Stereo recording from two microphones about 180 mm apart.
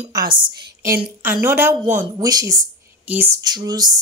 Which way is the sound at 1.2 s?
15° right (ahead or behind).